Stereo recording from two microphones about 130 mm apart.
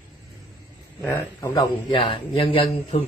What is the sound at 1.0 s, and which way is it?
Speech, 15° left (ahead or behind).